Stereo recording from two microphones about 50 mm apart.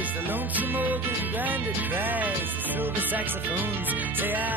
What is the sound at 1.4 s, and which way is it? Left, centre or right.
Music, right.